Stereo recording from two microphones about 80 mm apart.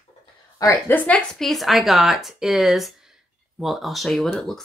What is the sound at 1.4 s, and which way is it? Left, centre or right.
A woman's voice, centre.